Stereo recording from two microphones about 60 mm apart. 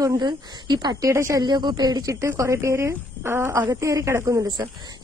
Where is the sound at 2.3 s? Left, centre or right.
Right.